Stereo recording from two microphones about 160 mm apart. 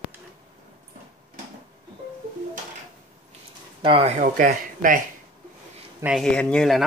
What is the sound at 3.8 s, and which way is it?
Speech, 35° right (ahead or behind).